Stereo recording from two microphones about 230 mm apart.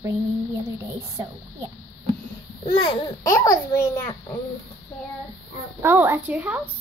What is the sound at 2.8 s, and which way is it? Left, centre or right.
A child's voice, centre.